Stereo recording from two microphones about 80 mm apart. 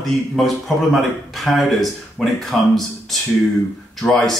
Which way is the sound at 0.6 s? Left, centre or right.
Centre.